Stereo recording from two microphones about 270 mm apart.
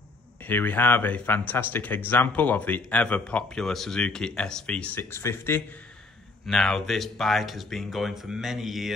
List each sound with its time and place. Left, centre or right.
0.5 s speech: centre